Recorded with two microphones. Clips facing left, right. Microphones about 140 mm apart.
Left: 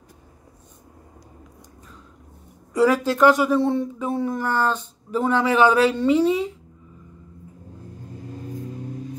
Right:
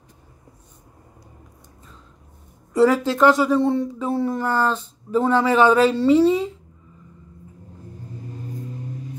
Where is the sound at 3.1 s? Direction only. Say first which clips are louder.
Even; 20° right (ahead or behind).